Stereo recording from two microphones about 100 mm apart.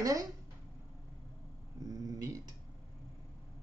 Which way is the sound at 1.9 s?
35° right (ahead or behind).